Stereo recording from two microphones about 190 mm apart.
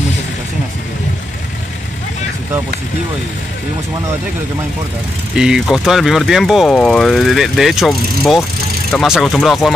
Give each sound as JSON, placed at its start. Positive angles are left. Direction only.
{"t": 5.3, "sound": "speech", "side_deg": -5}